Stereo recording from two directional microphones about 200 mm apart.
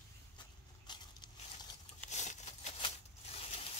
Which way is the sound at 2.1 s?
35° left (ahead or behind).